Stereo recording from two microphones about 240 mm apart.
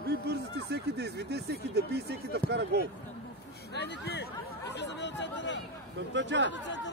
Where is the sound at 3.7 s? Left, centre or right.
Left.